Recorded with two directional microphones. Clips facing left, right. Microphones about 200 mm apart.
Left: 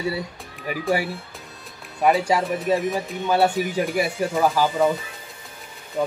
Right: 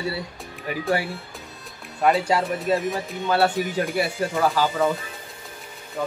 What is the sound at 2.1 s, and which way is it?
Speech, 15° left (ahead or behind).